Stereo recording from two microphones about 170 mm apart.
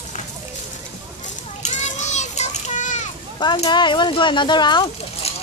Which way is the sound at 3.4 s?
25° left (ahead or behind).